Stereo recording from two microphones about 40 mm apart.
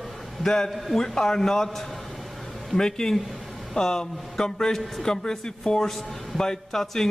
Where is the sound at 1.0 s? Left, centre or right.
Centre.